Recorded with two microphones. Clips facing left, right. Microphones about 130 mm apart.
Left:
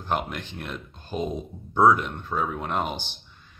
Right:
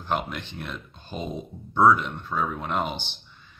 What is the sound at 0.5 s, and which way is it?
Speech, centre (ahead or behind).